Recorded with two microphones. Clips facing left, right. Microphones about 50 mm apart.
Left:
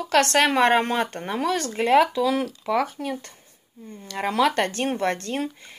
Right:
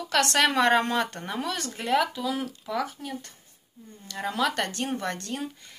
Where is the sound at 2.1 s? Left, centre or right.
Left.